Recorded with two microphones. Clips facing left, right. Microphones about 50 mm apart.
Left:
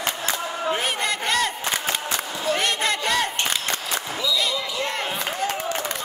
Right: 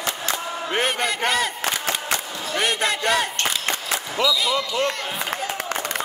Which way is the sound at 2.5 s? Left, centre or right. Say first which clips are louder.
Right 1 dB; centre.